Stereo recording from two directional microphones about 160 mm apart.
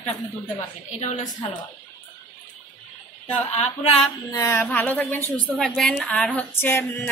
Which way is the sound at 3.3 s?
45° left (ahead or behind).